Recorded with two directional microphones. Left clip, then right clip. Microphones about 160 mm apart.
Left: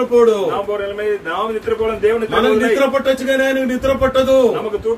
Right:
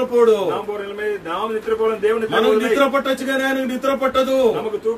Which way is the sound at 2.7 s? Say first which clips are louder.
Left 2 dB; 10° right (ahead or behind).